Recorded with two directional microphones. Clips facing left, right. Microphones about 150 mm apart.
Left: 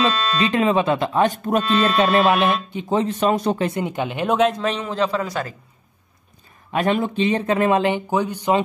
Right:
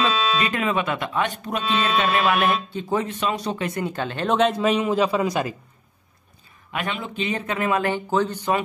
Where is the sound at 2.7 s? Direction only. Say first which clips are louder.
Left 2 dB; 20° left (ahead or behind).